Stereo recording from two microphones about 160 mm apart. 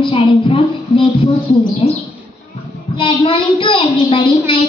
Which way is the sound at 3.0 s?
30° left (ahead or behind).